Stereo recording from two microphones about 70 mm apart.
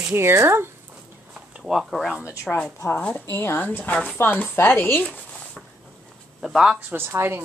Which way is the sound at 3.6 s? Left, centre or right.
Left.